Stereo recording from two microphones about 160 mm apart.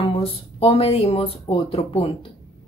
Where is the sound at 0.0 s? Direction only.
35° left (ahead or behind).